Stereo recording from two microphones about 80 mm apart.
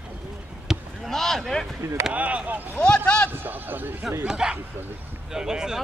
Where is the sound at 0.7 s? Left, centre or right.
Centre.